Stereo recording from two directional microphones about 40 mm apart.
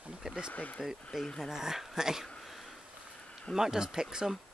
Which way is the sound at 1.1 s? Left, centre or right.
Centre.